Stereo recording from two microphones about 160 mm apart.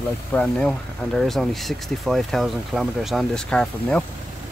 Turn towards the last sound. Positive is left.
turn(degrees=5)  # may be behind; listen again after turning